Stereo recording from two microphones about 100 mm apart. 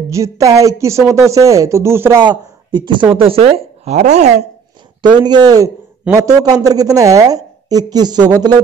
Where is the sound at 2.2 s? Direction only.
45° right (ahead or behind).